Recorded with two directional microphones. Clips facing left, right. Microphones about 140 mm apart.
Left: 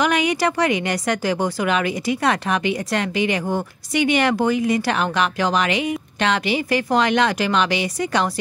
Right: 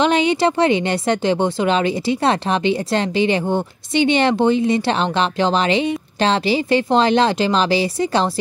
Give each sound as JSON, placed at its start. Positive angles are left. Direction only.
{"t": 0.0, "sound": "a woman's voice", "side_deg": -25}